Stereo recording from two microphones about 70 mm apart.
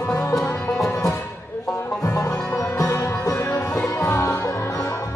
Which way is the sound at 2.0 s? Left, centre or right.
Left.